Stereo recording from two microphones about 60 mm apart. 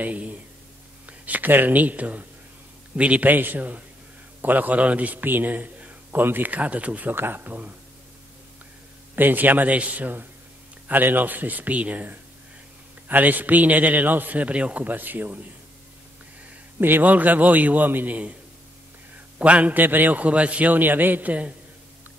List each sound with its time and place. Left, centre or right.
0.0 s a man's voice: right
9.1 s a man's voice: right
16.8 s a man's voice: right
19.3 s a man's voice: right